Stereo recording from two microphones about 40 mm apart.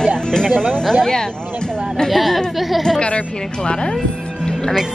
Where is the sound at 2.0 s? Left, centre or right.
Centre.